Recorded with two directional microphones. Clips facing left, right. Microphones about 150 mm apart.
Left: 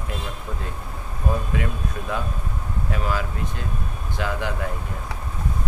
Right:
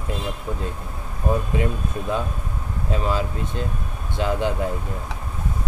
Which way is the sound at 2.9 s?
25° right (ahead or behind).